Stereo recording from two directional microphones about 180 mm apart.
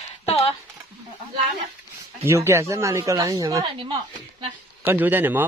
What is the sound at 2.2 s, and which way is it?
Speech, 15° right (ahead or behind).